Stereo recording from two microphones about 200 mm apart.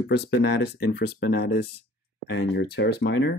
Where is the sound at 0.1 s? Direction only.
55° left (ahead or behind).